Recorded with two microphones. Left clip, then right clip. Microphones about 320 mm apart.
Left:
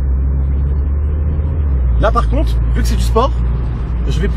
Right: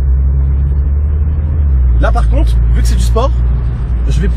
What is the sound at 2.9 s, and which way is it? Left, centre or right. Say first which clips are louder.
Speech: left 1 dB; centre.